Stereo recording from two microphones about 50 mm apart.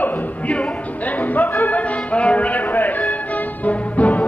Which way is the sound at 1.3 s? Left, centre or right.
Left.